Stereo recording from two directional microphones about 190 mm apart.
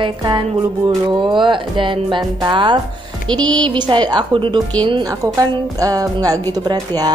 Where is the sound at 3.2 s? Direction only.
25° right (ahead or behind).